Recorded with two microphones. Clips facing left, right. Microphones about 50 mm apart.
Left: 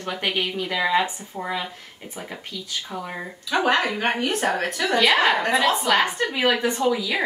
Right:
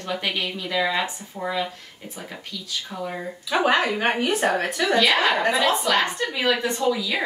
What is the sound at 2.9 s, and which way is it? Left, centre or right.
Speech, centre.